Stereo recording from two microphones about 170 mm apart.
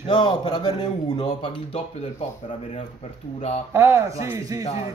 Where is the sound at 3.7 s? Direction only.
15° right (ahead or behind).